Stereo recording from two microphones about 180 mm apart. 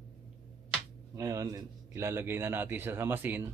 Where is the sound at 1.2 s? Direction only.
20° right (ahead or behind).